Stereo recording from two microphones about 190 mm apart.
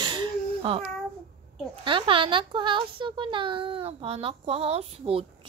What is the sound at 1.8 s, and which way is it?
A child's voice, 25° right (ahead or behind).